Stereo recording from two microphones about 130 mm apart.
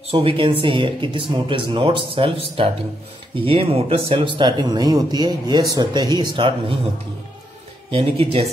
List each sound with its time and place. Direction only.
0.1 s speech: 45° right (ahead or behind)
7.9 s speech: 50° right (ahead or behind)